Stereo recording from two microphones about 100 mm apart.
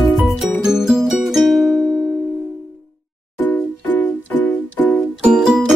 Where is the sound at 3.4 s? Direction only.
20° left (ahead or behind).